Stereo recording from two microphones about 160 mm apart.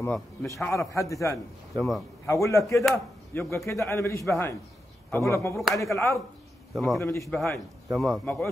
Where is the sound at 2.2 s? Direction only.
20° left (ahead or behind).